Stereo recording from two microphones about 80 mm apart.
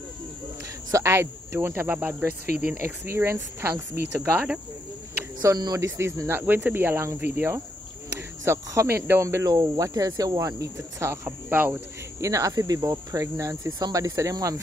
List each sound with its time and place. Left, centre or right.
0.9 s speech: right
5.4 s speech: right
5.8 s speech: right
8.5 s speech: right
11.4 s speech: right
12.2 s speech: right